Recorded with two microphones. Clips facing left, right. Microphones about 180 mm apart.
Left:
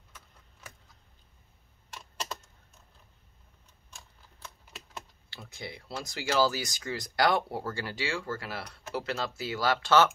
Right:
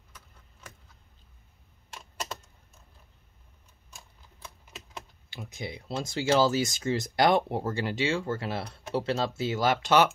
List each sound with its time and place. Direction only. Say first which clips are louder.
5.3 s speech: right 4 dB; 15° right (ahead or behind)